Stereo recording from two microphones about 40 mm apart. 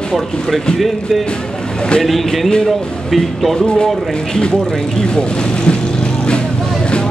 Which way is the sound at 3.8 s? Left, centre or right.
Centre.